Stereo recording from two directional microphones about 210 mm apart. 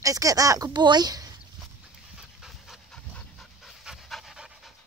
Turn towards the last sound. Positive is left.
turn(degrees=0)  # may be behind; listen again after turning